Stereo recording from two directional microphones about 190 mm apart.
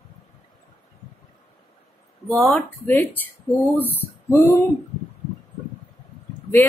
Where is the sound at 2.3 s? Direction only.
Centre (ahead or behind).